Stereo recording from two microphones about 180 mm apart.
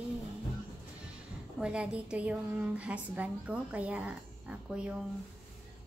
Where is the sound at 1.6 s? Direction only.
5° right (ahead or behind).